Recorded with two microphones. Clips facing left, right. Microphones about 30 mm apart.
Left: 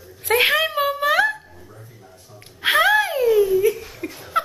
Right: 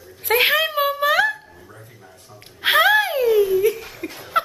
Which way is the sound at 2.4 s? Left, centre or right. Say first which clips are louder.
Right 1 dB; centre.